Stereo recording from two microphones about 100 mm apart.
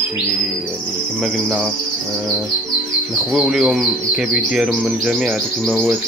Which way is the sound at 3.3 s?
5° right (ahead or behind).